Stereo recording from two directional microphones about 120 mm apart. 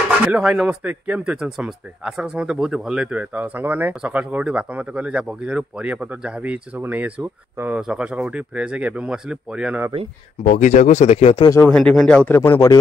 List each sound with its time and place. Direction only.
0.3 s speech: 5° right (ahead or behind)
0.7 s speech: 15° right (ahead or behind)
10.5 s speech: 90° left; by 11.4 s 60° left (ahead or behind)
11.7 s speech: 5° left (ahead or behind)
12.3 s speech: 20° left (ahead or behind)